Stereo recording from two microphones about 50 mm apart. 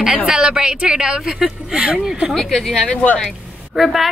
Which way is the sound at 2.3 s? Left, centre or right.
Centre.